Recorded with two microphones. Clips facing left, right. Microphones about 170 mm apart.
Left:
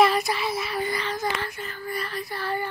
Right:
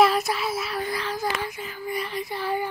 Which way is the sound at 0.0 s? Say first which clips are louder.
Right 1 dB; centre (ahead or behind).